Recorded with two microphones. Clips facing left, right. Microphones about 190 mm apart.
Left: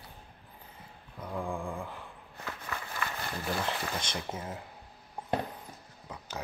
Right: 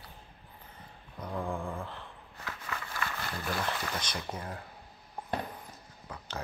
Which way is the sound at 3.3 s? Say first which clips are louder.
Left 1 dB; 20° left (ahead or behind).